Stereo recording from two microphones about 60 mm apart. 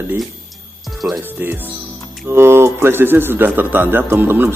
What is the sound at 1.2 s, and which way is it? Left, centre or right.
Speech, right.